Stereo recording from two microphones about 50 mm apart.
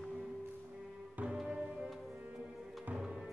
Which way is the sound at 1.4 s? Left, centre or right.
Centre.